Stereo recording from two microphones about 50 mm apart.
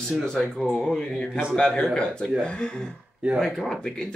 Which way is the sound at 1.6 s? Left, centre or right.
Centre.